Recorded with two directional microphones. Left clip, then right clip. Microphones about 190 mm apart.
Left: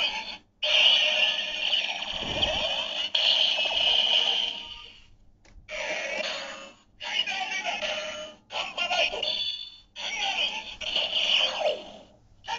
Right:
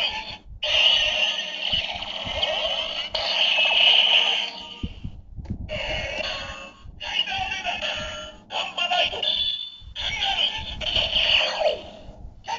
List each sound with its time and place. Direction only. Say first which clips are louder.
0.0 s music: right 2 dB; 5° left (ahead or behind)
3.6 s a sound: right 6 dB; 25° left (ahead or behind)
5.7 s music: right 2 dB; 25° left (ahead or behind); by 11.9 s 5° right (ahead or behind)